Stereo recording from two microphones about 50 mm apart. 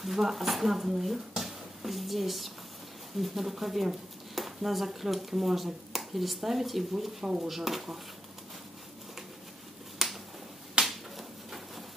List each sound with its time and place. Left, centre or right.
0.0 s speech: centre
10.0 s finger snapping: centre
10.9 s a sound: centre